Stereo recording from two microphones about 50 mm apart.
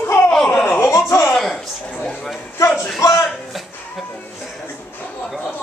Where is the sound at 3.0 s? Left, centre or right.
Left.